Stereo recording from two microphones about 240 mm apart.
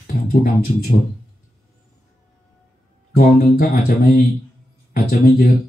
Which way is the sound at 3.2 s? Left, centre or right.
Left.